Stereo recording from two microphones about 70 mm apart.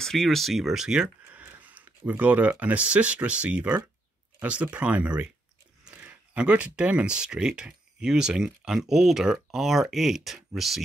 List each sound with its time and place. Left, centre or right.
0.0 s speech: centre
1.3 s speech: right; by 10.8 s centre